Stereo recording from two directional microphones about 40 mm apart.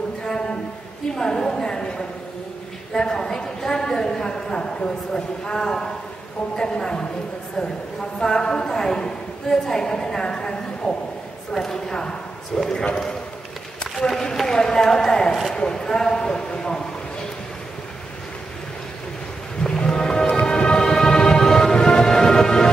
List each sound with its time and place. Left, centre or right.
0.2 s a sound: centre
2.9 s a woman's voice: centre
8.2 s a woman's voice: centre
13.9 s a man's voice: centre
19.6 s music: centre